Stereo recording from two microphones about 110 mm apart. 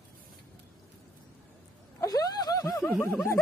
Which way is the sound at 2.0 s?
35° left (ahead or behind).